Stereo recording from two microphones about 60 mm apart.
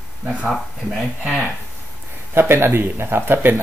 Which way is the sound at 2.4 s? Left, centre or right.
Right.